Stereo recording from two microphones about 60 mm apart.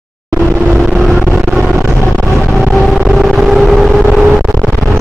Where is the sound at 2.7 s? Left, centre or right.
Centre.